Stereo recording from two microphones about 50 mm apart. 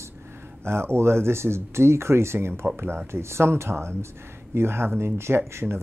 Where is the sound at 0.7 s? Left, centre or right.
Right.